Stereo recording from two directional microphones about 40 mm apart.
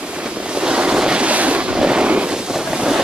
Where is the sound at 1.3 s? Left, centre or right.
Right.